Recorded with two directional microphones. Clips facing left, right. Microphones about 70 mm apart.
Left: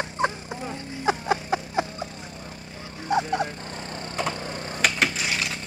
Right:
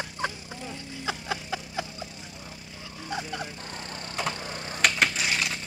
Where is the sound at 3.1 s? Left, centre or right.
Left.